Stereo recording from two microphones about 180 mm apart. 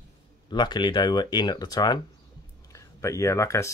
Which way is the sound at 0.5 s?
25° left (ahead or behind).